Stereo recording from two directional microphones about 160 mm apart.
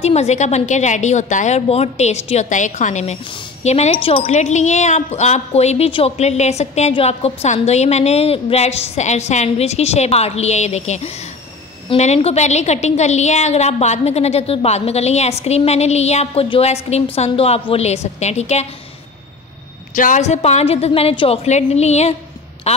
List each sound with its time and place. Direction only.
0.0 s speech: 45° left (ahead or behind)
19.9 s a woman's voice: 55° left (ahead or behind)